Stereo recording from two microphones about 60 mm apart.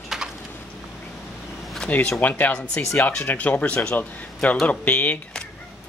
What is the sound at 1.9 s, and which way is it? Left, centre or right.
A man's voice, left.